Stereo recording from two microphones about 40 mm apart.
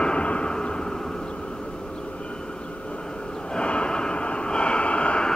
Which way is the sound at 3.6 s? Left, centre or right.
Left.